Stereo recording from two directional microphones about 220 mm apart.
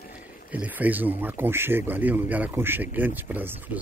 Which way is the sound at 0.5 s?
5° right (ahead or behind).